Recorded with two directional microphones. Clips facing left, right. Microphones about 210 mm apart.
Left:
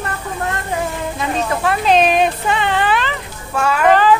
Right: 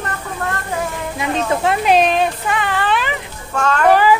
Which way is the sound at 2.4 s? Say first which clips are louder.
Left 2 dB; 25° left (ahead or behind).